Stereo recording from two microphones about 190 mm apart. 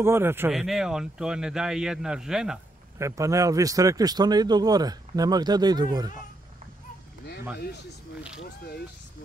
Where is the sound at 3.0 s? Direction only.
15° right (ahead or behind).